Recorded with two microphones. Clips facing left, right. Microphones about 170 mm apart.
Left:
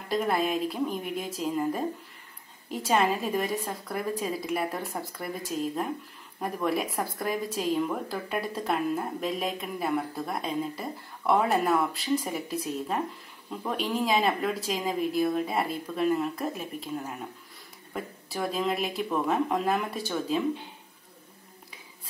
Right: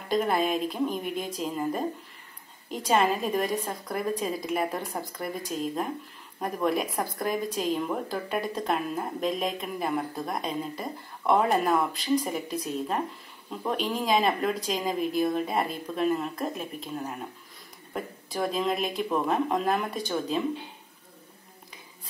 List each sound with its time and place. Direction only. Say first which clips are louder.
0.1 s speech: right 1 dB; centre (ahead or behind)